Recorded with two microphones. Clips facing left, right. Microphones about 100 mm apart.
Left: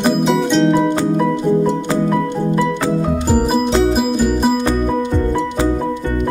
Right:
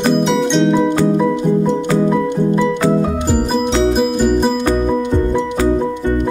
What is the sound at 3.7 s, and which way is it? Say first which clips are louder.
Music: even; centre (ahead or behind).